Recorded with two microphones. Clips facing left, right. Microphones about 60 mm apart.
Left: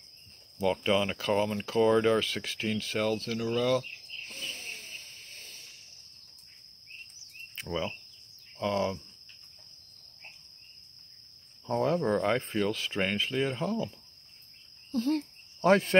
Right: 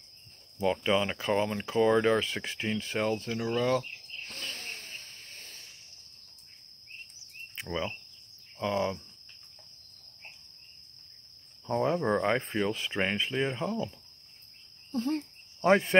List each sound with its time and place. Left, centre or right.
0.6 s speech: right
4.3 s a sound: right
7.5 s speech: right
11.7 s speech: right
14.9 s speech: right